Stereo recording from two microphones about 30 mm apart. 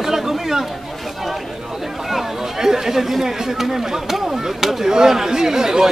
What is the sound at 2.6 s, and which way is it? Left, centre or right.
Speech, centre.